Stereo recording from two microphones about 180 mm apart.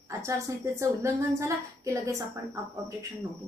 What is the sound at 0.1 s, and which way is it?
A woman's voice, 15° right (ahead or behind).